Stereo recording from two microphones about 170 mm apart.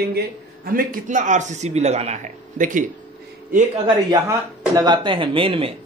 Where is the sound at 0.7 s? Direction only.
50° right (ahead or behind).